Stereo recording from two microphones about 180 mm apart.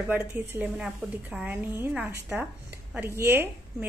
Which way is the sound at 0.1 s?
10° right (ahead or behind).